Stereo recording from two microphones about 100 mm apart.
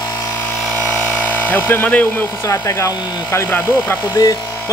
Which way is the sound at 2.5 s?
30° left (ahead or behind).